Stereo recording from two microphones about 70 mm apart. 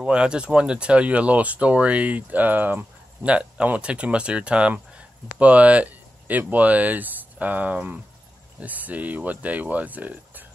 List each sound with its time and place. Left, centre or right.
0.0 s speech: centre